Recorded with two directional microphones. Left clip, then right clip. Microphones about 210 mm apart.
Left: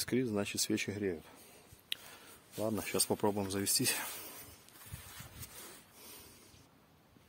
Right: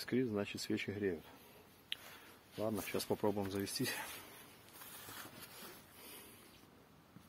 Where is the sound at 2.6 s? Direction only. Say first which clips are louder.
Left 4 dB; 60° left (ahead or behind).